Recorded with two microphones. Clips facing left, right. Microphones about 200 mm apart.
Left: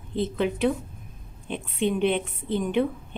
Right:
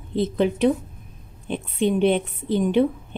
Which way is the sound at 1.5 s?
35° right (ahead or behind).